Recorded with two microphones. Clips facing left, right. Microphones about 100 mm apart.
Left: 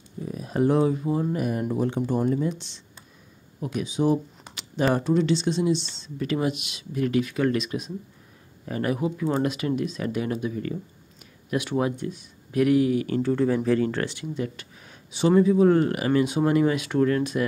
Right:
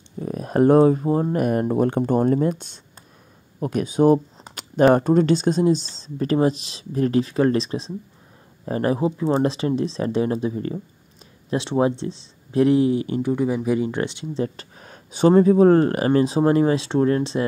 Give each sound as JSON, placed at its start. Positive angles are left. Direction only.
{"t": 0.2, "sound": "speech", "side_deg": -50}
{"t": 14.4, "sound": "speech", "side_deg": -40}